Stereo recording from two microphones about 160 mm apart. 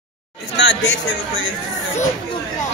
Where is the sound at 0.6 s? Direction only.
90° left.